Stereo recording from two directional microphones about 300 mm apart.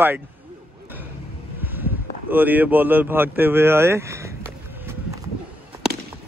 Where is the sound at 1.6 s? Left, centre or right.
Centre.